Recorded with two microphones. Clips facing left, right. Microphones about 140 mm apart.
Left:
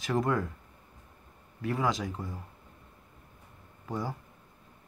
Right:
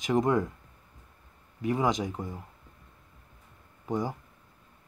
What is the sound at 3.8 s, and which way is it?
Speech, 20° right (ahead or behind).